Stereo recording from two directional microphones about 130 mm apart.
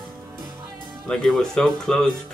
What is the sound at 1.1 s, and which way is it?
Speech, 5° left (ahead or behind).